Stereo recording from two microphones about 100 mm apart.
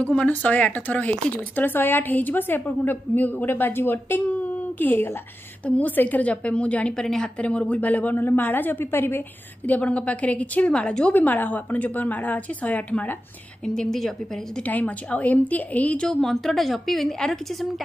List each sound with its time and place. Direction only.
0.0 s a woman's voice: 10° left (ahead or behind)
13.7 s a woman's voice: 5° left (ahead or behind)
14.6 s a woman's voice: 15° left (ahead or behind)